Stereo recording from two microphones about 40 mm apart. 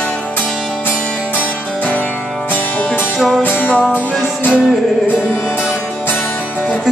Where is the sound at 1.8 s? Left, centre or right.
Left.